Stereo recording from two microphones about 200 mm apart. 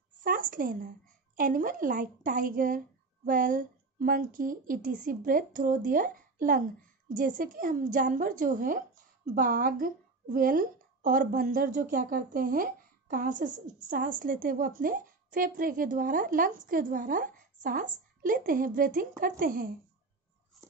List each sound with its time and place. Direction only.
0.2 s a woman's voice: 45° right (ahead or behind)